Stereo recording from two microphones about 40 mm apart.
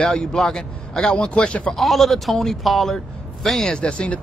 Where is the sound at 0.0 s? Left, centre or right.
Left.